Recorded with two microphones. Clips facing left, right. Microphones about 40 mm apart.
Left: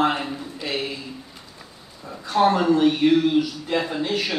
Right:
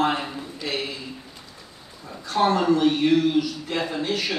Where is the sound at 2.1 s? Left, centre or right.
Centre.